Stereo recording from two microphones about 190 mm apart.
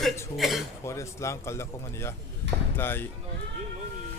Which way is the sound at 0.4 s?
Centre (ahead or behind).